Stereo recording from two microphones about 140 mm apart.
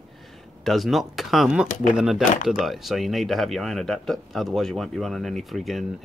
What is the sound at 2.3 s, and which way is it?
Speech, 75° left (ahead or behind).